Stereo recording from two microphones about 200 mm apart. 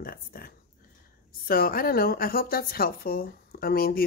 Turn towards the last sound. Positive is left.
turn(degrees=50)  # may be behind; listen again after turning